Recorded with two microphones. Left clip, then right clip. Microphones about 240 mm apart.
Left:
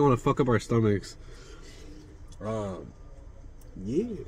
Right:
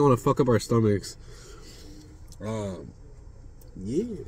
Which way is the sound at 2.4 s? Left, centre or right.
Right.